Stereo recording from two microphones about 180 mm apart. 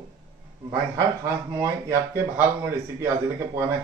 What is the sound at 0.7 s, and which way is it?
Speech, 15° right (ahead or behind).